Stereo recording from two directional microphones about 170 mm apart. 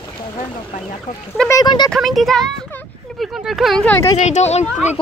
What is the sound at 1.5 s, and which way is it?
Speech, 25° left (ahead or behind).